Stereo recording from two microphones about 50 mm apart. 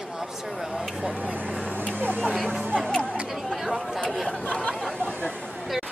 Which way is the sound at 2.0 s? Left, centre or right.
Right.